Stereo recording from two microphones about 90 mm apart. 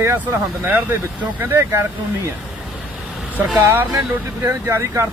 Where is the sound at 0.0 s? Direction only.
20° right (ahead or behind).